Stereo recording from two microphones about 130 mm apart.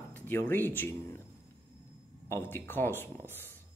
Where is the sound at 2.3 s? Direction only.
15° left (ahead or behind).